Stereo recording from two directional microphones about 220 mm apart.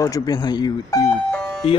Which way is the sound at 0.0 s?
15° left (ahead or behind).